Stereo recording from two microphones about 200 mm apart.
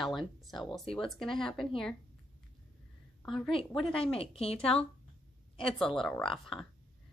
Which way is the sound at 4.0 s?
30° left (ahead or behind).